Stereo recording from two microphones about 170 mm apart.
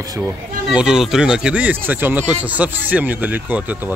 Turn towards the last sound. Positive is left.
turn(degrees=-10)  # may be behind; listen again after turning